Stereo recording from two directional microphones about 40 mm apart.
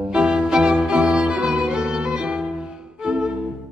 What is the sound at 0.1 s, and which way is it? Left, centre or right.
Music, right.